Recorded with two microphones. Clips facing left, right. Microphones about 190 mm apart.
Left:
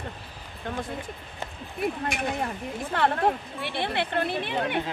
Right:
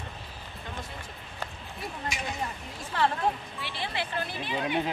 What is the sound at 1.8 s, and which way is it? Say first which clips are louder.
A woman's voice: left 8 dB; 55° left (ahead or behind).